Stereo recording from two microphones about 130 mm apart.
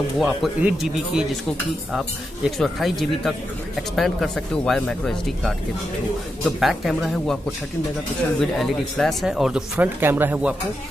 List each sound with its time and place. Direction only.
0.2 s speech: 5° right (ahead or behind)
8.4 s speech: centre (ahead or behind)
9.9 s speech: 15° right (ahead or behind)